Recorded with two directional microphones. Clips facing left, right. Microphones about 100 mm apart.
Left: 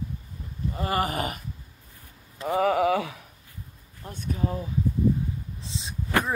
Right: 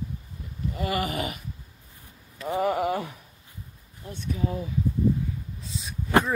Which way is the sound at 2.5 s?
90° left.